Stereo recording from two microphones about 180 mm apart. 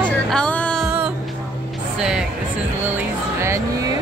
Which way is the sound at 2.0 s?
5° right (ahead or behind).